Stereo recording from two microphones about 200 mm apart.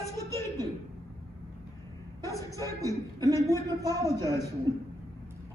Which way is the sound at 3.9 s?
15° left (ahead or behind).